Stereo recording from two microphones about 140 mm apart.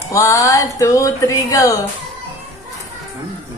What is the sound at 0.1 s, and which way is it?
Speech, 25° left (ahead or behind).